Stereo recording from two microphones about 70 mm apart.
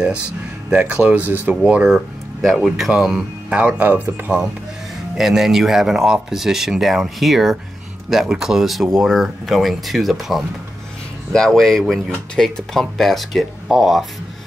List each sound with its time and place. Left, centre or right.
0.7 s speech: centre
1.5 s speech: centre
1.9 s speech: centre; by 4.4 s right
5.1 s speech: centre